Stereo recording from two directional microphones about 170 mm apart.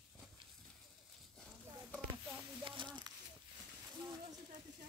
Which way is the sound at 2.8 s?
30° right (ahead or behind).